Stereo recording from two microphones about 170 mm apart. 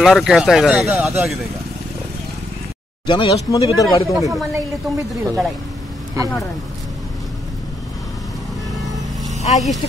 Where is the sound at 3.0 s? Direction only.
25° left (ahead or behind).